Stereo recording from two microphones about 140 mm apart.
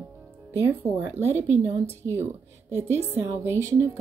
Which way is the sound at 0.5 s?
15° right (ahead or behind).